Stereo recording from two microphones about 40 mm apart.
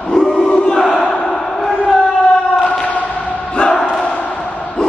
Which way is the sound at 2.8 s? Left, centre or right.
Left.